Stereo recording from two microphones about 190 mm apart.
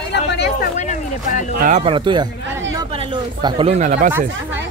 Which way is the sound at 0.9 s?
40° left (ahead or behind).